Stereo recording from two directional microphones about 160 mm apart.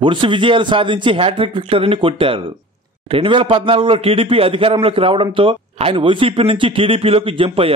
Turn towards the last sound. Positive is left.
turn(degrees=-35)  # may be behind; listen again after turning